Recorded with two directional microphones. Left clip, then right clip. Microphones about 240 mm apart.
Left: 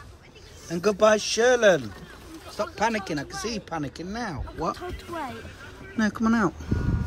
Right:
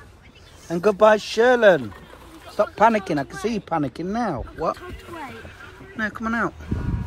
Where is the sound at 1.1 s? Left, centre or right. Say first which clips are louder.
Right 3 dB; centre.